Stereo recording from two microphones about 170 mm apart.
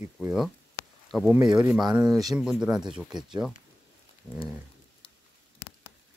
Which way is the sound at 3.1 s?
25° right (ahead or behind).